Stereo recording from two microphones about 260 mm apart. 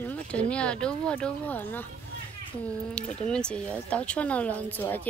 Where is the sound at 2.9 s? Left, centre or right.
Centre.